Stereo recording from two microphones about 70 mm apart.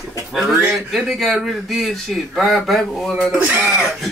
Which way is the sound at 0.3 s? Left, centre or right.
Centre.